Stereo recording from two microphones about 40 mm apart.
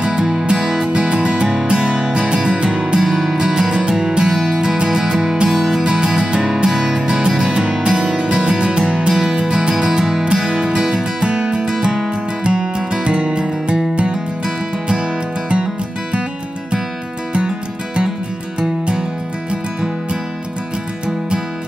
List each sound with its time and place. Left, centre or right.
0.0 s music: centre
18.6 s music: right